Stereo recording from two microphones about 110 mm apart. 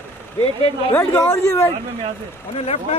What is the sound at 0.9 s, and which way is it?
Speech, 20° left (ahead or behind).